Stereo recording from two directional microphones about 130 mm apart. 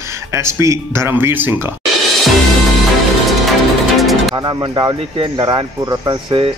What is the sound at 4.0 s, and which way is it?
Music, centre (ahead or behind).